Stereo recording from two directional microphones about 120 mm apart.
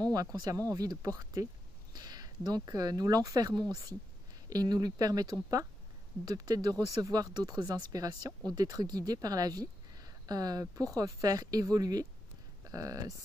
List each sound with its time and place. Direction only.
0.0 s speech: 30° right (ahead or behind)